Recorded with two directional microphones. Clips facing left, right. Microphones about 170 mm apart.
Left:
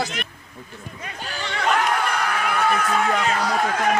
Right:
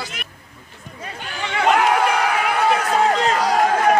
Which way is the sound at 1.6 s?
65° right (ahead or behind).